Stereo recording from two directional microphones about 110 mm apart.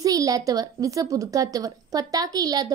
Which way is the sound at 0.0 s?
30° right (ahead or behind).